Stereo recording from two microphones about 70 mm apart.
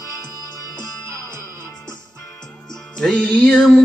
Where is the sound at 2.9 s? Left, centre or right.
Centre.